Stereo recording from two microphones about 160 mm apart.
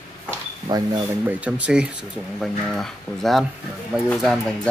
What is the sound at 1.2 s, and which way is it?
Speech, 10° right (ahead or behind).